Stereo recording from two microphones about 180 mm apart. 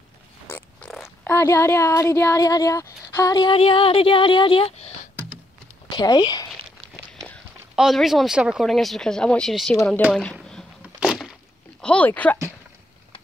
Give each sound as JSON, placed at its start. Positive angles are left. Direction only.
{"t": 0.5, "sound": "speech", "side_deg": 10}
{"t": 5.9, "sound": "speech", "side_deg": 20}
{"t": 7.2, "sound": "speech", "side_deg": 0}
{"t": 10.1, "sound": "a sound", "side_deg": 5}
{"t": 11.8, "sound": "speech", "side_deg": 5}